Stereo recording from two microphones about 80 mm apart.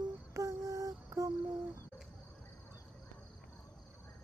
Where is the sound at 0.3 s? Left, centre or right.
Right.